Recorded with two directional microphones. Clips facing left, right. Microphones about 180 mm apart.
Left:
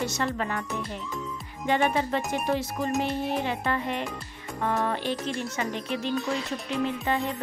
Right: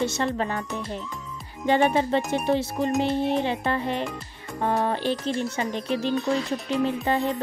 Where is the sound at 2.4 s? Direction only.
25° right (ahead or behind).